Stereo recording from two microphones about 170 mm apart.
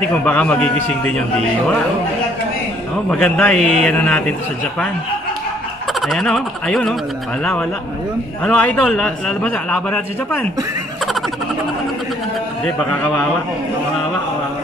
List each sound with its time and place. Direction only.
0.1 s a man's voice: 10° left (ahead or behind)
3.1 s a man's voice: 5° left (ahead or behind)
5.9 s a man's voice: centre (ahead or behind)
8.5 s a man's voice: 5° left (ahead or behind)
12.6 s a man's voice: 10° left (ahead or behind)